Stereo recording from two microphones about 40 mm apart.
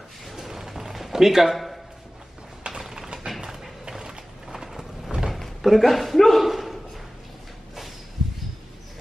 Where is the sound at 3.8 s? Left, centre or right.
Centre.